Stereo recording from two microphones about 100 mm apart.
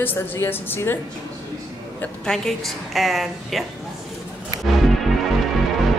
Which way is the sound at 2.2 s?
5° left (ahead or behind).